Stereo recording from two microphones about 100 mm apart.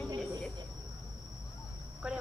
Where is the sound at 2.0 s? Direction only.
10° right (ahead or behind).